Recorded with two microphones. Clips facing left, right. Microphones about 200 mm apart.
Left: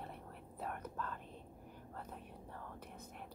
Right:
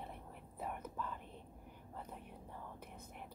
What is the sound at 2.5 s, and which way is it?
Whispering, 10° right (ahead or behind).